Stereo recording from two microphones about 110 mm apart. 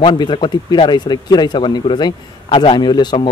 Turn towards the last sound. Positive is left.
turn(degrees=45)  # may be behind; listen again after turning